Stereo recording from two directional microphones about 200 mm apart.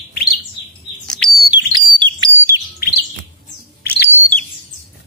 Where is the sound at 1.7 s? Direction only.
20° right (ahead or behind).